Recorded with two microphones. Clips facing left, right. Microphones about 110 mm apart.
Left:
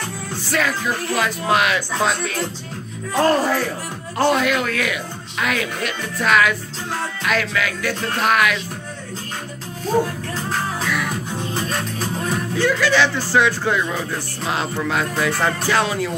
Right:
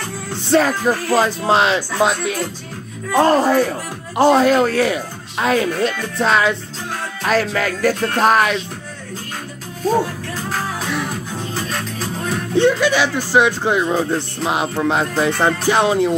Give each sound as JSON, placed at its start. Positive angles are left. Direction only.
{"t": 0.5, "sound": "speech", "side_deg": -35}
{"t": 3.2, "sound": "speech", "side_deg": -25}
{"t": 7.2, "sound": "speech", "side_deg": -40}
{"t": 12.5, "sound": "speech", "side_deg": -25}
{"t": 12.9, "sound": "speech", "side_deg": -15}